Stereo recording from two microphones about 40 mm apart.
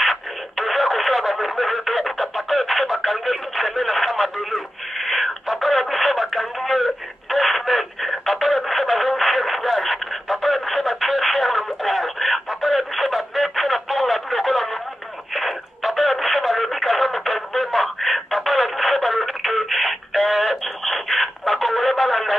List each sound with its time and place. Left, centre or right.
0.0 s radio: centre